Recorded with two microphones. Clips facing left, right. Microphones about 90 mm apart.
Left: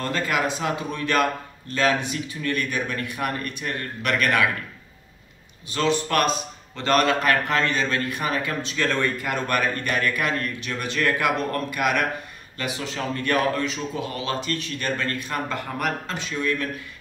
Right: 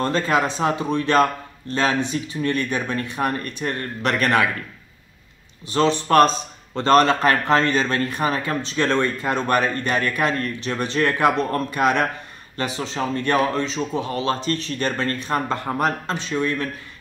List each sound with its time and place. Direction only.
0.0 s speech: 30° right (ahead or behind)
5.7 s speech: 35° right (ahead or behind)